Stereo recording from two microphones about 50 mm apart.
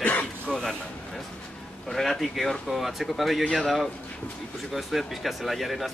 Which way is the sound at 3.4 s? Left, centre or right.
Centre.